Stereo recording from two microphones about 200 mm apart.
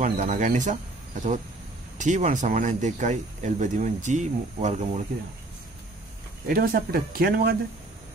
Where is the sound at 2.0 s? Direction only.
35° right (ahead or behind).